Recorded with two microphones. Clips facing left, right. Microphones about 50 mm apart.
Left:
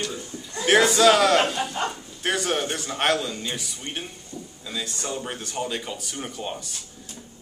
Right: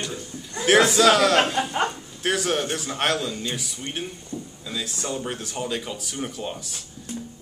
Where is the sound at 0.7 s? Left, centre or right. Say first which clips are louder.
Even; centre.